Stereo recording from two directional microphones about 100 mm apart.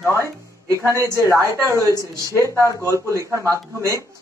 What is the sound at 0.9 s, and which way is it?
Speech, 30° right (ahead or behind).